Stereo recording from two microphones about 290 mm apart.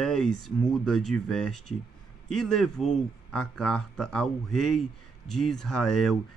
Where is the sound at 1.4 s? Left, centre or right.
Left.